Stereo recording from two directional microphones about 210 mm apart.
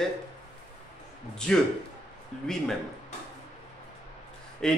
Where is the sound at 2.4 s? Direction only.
Centre (ahead or behind).